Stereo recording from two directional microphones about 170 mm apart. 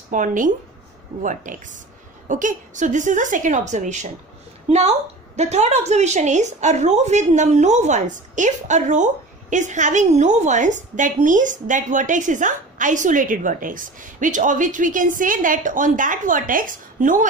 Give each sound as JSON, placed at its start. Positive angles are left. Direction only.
{"t": 0.1, "sound": "a woman's voice", "side_deg": -50}